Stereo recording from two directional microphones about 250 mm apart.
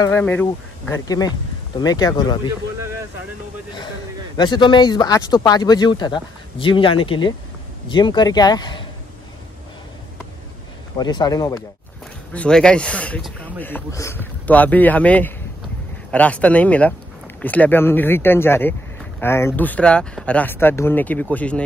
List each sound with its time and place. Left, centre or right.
0.0 s speech: centre
4.4 s speech: centre
11.0 s speech: centre
12.3 s speech: centre